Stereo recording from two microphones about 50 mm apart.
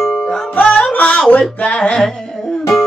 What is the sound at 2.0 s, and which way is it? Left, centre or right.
Music, centre.